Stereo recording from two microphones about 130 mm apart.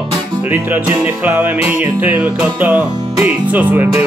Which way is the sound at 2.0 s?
10° right (ahead or behind).